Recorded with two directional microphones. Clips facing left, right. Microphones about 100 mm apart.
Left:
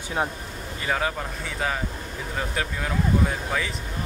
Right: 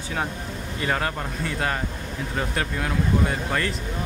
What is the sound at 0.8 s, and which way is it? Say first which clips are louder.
Speech: even; centre (ahead or behind).